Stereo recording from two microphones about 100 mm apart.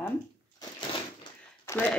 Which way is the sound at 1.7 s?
30° left (ahead or behind).